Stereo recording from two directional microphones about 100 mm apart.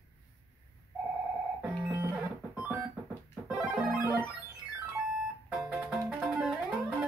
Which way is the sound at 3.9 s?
15° right (ahead or behind).